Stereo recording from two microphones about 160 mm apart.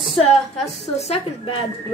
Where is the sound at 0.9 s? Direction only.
40° left (ahead or behind).